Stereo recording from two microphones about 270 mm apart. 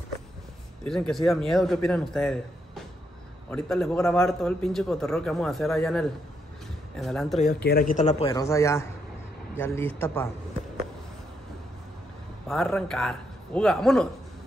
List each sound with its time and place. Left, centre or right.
0.8 s a man's voice: centre
7.3 s speech: left; by 10.3 s centre
12.4 s a man's voice: centre